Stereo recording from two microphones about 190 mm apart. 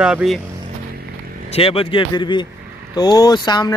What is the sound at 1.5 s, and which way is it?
Speech, 30° left (ahead or behind).